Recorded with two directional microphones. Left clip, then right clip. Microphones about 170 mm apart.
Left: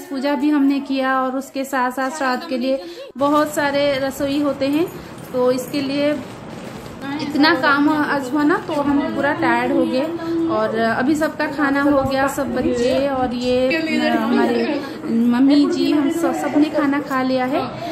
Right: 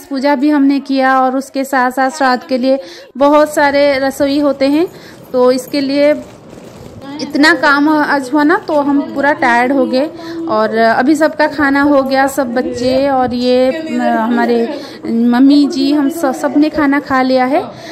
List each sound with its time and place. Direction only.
0.1 s a woman's voice: 45° right (ahead or behind)
7.3 s a woman's voice: 45° right (ahead or behind)
13.7 s music: 10° right (ahead or behind)
14.1 s a woman's voice: 40° right (ahead or behind)